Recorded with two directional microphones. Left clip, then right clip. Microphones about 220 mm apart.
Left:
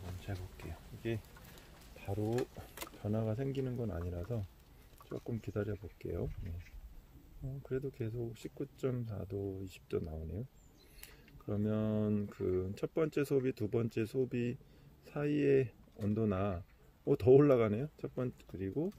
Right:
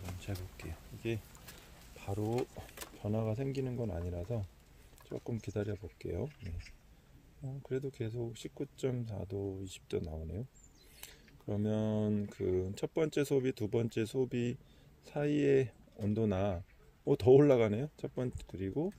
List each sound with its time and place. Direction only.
0.3 s speech: 25° right (ahead or behind)
2.0 s speech: 15° right (ahead or behind)
7.6 s speech: 20° right (ahead or behind)